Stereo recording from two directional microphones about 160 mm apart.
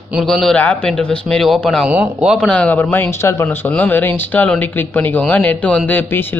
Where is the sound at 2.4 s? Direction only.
5° left (ahead or behind).